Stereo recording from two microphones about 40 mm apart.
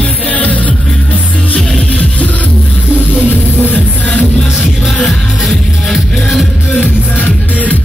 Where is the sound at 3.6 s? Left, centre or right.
Left.